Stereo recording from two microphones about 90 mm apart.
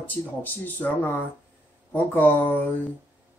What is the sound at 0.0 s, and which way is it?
Speech, 20° left (ahead or behind).